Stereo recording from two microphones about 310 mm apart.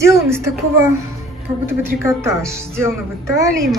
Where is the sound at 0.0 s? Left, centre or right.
Centre.